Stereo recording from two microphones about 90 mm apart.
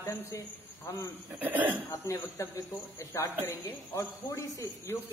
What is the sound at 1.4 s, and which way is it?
Speech, 20° right (ahead or behind).